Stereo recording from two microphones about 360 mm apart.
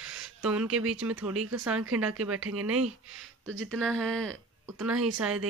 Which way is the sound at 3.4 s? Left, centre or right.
Right.